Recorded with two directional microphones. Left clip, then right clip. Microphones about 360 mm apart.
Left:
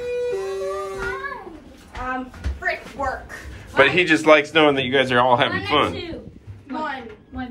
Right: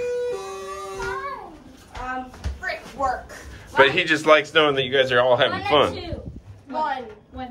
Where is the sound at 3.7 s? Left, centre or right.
Centre.